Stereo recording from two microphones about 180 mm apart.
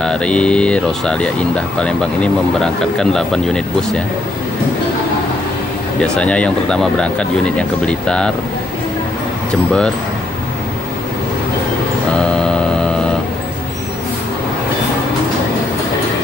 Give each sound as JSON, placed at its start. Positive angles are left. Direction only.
{"t": 0.0, "sound": "speech", "side_deg": 5}
{"t": 5.9, "sound": "speech", "side_deg": 5}